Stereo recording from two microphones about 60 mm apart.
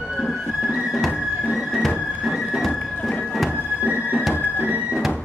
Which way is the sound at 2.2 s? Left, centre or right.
Centre.